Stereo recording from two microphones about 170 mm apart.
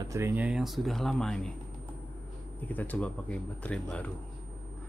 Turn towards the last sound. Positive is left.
turn(degrees=5)  # may be behind; listen again after turning